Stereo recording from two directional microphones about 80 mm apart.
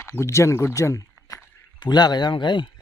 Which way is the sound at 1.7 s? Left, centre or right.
Left.